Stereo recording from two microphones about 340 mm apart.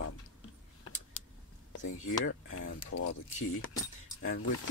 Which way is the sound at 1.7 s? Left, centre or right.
Left.